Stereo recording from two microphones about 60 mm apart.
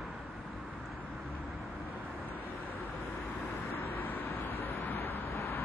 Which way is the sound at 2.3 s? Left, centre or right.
Left.